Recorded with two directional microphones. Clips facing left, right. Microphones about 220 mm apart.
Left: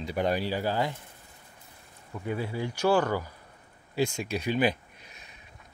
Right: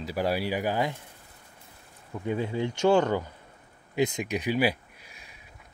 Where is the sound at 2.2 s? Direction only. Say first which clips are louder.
Right 3 dB; 20° right (ahead or behind).